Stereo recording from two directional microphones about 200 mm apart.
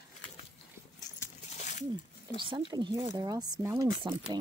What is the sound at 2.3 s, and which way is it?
Speech, 25° right (ahead or behind).